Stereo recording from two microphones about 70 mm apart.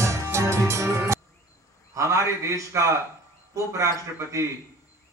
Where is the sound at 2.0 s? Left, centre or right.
Right.